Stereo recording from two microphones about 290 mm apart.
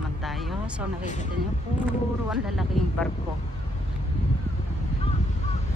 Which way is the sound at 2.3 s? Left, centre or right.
Centre.